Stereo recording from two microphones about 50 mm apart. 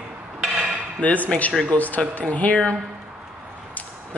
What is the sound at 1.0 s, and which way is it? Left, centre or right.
Speech, left.